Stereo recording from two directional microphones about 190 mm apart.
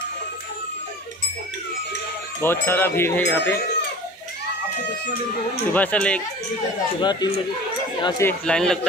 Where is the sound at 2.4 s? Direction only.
10° left (ahead or behind).